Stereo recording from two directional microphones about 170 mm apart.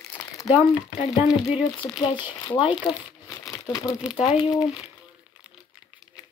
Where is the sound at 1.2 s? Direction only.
5° right (ahead or behind).